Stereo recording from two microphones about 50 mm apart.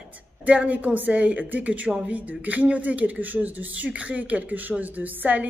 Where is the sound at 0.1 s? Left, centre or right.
Right.